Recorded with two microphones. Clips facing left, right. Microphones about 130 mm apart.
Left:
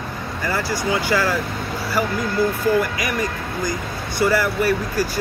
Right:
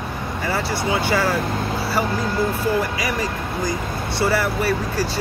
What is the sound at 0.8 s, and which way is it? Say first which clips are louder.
Speech: even; 25° right (ahead or behind).